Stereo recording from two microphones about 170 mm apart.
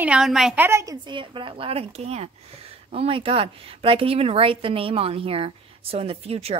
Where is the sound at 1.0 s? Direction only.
30° right (ahead or behind).